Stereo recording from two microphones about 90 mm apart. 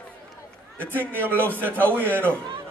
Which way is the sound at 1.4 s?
20° left (ahead or behind).